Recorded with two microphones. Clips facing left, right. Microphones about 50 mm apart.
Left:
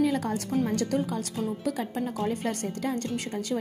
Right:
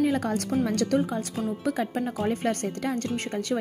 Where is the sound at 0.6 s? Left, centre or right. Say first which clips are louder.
Right 3 dB; right.